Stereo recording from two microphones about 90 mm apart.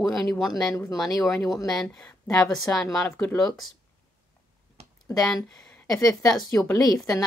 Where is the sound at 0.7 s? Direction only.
40° left (ahead or behind).